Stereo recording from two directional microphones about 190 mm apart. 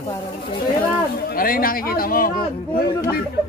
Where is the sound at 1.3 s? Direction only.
50° left (ahead or behind).